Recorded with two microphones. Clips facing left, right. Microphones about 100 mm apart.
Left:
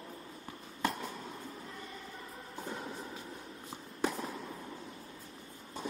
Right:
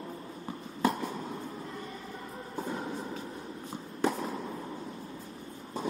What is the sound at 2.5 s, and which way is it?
Music, 30° right (ahead or behind).